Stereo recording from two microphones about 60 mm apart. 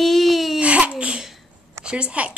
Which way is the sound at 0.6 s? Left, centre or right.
Right.